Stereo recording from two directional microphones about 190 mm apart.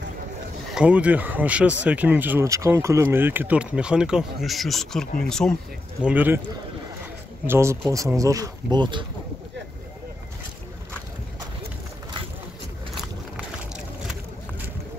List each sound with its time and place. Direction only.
0.7 s speech: 5° right (ahead or behind)
6.0 s speech: 10° right (ahead or behind)
7.4 s speech: 15° right (ahead or behind)